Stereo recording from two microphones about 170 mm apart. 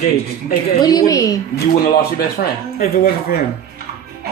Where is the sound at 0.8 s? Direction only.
20° left (ahead or behind).